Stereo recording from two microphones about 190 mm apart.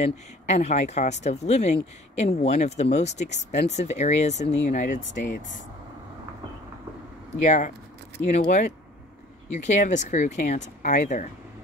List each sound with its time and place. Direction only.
0.0 s speech: 35° left (ahead or behind)
7.4 s speech: 40° left (ahead or behind)
9.7 s speech: 40° left (ahead or behind)